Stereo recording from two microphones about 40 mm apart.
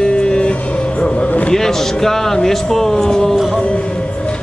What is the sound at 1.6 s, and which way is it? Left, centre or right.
Speech, centre.